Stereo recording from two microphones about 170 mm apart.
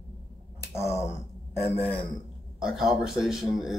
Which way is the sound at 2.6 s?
Centre (ahead or behind).